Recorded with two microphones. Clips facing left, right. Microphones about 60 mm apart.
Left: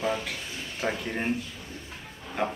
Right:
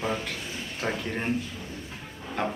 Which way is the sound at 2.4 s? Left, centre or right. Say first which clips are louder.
Even; centre.